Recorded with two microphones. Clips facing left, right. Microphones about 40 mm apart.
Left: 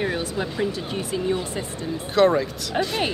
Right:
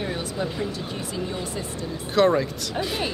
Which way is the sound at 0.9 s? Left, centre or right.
Left.